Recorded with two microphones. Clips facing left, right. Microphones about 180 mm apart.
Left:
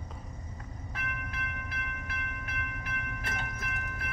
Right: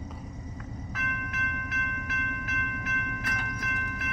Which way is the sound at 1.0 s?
30° left (ahead or behind).